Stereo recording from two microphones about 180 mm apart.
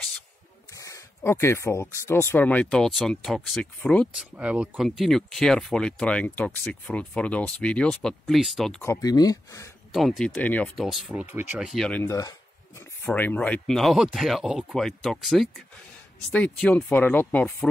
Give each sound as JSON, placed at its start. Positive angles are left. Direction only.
{"t": 0.7, "sound": "speech", "side_deg": 15}
{"t": 8.8, "sound": "speech", "side_deg": 15}
{"t": 9.9, "sound": "speech", "side_deg": 0}
{"t": 12.0, "sound": "speech", "side_deg": 20}